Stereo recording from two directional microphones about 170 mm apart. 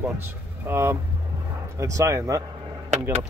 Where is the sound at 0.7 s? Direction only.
15° right (ahead or behind).